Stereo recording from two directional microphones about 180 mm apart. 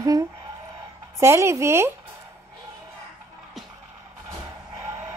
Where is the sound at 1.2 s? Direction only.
15° right (ahead or behind).